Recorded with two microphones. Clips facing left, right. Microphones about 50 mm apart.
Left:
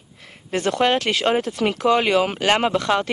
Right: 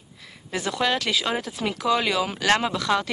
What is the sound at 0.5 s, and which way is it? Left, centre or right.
Speech, left.